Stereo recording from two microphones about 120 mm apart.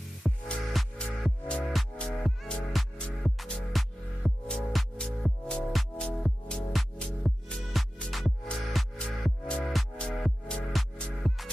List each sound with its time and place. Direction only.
0.5 s music: 5° left (ahead or behind)